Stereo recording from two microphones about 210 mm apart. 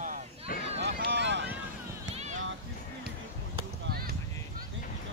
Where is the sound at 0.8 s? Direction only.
55° right (ahead or behind).